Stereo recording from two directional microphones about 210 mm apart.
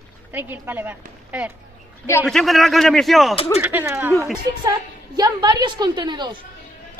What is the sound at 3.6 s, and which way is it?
Speech, 10° right (ahead or behind).